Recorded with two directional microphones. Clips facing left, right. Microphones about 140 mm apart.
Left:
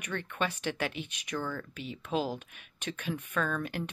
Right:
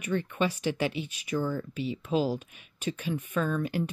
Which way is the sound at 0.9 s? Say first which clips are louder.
Right 5 dB; 60° left (ahead or behind).